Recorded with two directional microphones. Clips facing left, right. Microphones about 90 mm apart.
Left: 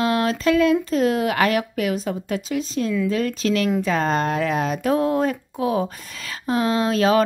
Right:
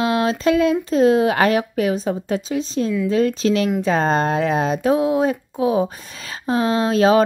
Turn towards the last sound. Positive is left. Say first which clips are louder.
# right 3 dB
turn(degrees=-25)  # may be behind; listen again after turning